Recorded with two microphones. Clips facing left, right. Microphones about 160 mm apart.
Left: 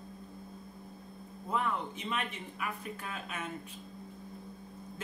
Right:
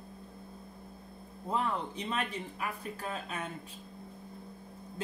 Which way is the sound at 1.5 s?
35° right (ahead or behind).